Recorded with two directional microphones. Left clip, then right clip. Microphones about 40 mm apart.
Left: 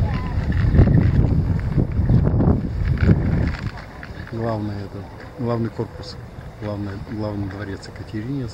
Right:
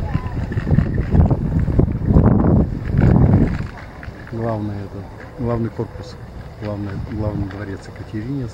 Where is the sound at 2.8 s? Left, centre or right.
Left.